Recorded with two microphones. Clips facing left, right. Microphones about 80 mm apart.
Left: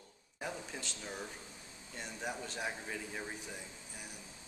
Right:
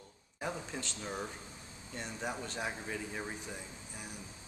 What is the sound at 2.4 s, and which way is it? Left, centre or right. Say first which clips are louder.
Speech: right 2 dB; centre.